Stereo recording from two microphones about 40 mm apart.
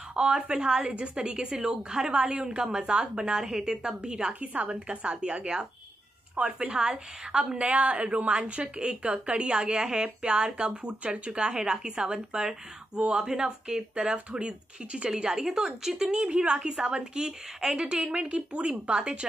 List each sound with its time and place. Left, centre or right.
0.1 s a woman's voice: right
7.5 s a woman's voice: right; by 16.2 s centre
16.2 s a woman's voice: right